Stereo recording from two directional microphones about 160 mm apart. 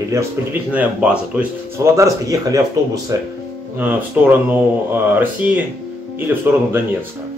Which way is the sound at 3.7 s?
10° right (ahead or behind).